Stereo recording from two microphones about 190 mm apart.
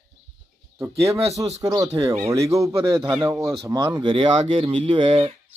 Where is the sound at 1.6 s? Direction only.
20° right (ahead or behind).